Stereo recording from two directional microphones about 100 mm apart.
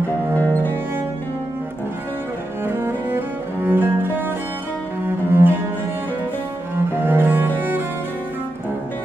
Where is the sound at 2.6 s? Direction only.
20° right (ahead or behind).